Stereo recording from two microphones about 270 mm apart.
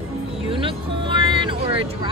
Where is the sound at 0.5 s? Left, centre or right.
Centre.